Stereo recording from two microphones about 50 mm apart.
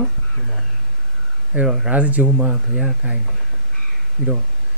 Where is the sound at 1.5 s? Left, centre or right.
Centre.